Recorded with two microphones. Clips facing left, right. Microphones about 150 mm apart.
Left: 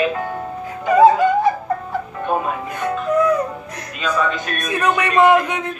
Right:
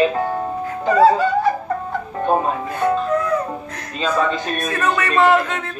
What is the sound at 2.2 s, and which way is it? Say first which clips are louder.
A man's voice: right 4 dB; 30° right (ahead or behind).